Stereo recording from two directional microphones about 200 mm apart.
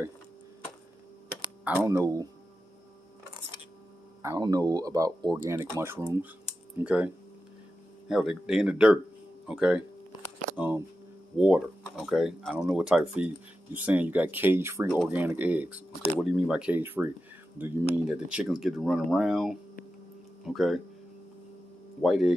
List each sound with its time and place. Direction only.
1.6 s speech: 10° right (ahead or behind)
4.2 s speech: 15° right (ahead or behind)
8.1 s speech: 5° right (ahead or behind)
22.0 s speech: centre (ahead or behind)